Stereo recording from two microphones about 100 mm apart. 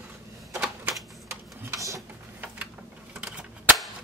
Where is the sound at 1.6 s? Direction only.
30° right (ahead or behind).